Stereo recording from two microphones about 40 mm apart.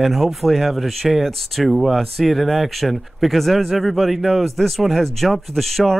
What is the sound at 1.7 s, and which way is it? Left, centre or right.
A man's voice, centre.